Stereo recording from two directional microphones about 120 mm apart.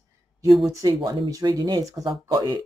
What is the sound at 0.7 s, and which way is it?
Speech, 30° right (ahead or behind).